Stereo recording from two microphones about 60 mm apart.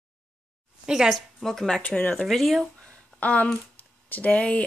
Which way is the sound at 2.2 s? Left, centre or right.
Centre.